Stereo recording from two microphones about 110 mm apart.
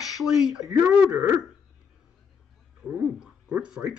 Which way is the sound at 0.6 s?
25° right (ahead or behind).